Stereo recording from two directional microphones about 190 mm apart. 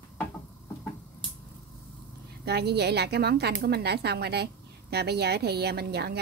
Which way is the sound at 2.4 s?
60° right (ahead or behind).